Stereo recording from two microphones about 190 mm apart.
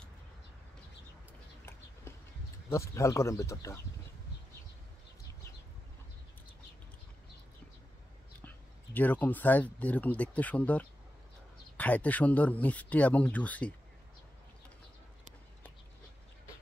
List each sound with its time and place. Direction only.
2.7 s speech: 15° left (ahead or behind)
8.5 s speech: 10° left (ahead or behind)